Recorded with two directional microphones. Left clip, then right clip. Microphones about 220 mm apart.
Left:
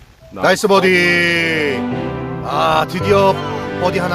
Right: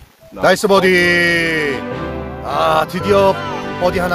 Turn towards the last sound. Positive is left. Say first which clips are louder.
# right 1 dB
turn(degrees=0)  # may be behind; listen again after turning